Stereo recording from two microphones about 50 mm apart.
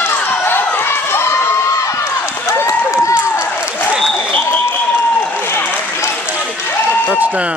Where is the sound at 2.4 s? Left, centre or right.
Left.